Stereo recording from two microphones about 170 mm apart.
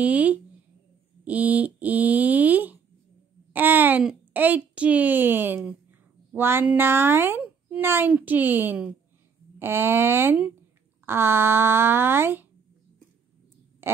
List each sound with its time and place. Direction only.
0.0 s a woman's voice: 10° right (ahead or behind)